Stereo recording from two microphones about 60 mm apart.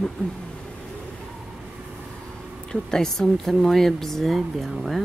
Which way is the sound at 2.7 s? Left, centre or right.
Centre.